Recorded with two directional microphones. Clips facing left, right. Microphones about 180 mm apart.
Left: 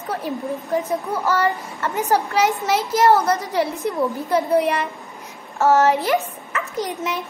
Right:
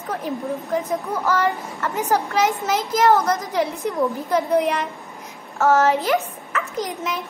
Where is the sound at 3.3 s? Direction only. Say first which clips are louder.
Left 1 dB; 5° left (ahead or behind).